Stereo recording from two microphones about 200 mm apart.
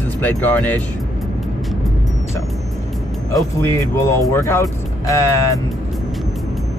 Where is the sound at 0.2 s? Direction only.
10° left (ahead or behind).